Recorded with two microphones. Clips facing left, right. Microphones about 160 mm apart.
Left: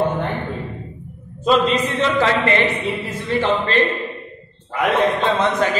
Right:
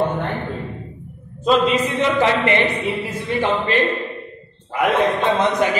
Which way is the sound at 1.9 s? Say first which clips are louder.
Right 1 dB; 15° right (ahead or behind).